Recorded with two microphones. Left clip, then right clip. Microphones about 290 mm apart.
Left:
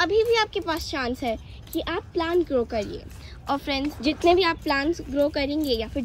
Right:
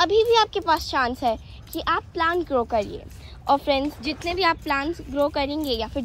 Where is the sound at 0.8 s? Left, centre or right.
Left.